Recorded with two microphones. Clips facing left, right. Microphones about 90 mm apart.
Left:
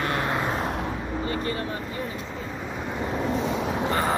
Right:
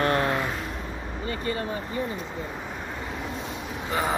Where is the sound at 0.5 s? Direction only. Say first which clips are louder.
Left 6 dB; 60° left (ahead or behind).